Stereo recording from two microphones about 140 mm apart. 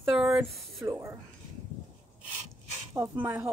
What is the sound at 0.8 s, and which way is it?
Speech, 20° right (ahead or behind).